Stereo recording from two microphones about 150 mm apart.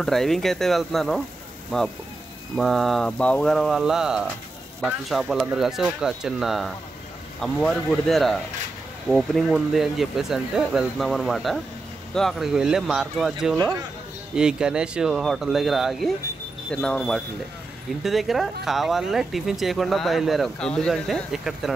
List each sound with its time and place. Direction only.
0.0 s speech: centre (ahead or behind)